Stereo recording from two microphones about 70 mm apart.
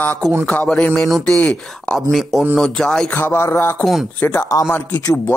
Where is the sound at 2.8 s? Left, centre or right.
Centre.